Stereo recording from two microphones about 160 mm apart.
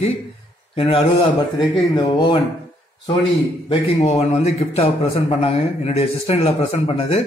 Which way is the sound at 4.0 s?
45° left (ahead or behind).